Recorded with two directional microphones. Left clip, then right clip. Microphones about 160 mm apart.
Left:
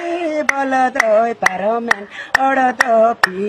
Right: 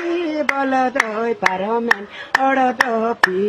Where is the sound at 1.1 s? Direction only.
30° left (ahead or behind).